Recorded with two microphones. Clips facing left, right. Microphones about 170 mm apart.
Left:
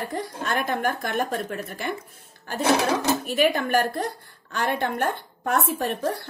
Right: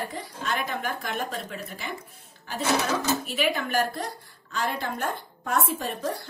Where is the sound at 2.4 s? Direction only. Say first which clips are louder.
Left 4 dB; 45° left (ahead or behind).